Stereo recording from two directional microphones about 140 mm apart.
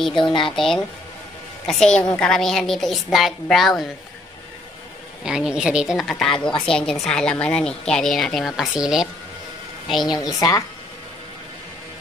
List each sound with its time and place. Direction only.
0.1 s speech: 35° left (ahead or behind)
0.6 s a woman's voice: centre (ahead or behind)
5.2 s a woman's voice: 5° right (ahead or behind)
10.2 s speech: 25° left (ahead or behind)